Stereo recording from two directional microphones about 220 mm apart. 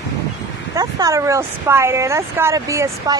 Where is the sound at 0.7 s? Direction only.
15° right (ahead or behind).